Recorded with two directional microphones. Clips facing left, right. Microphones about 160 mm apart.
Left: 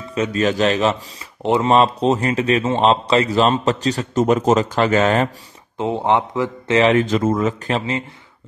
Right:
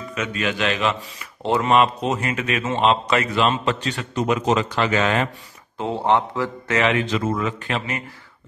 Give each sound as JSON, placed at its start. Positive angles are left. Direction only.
{"t": 0.1, "sound": "a man's voice", "side_deg": 35}
{"t": 1.4, "sound": "speech", "side_deg": 20}
{"t": 1.7, "sound": "a man's voice", "side_deg": 30}
{"t": 5.8, "sound": "a man's voice", "side_deg": 20}
{"t": 6.8, "sound": "a man's voice", "side_deg": 40}